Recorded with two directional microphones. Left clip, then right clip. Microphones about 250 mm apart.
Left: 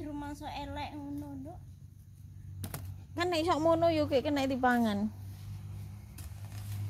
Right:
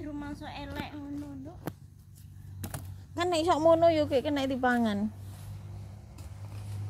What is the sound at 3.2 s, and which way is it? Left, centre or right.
A woman's voice, centre.